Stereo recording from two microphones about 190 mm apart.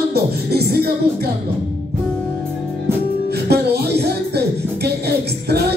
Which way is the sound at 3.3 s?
55° right (ahead or behind).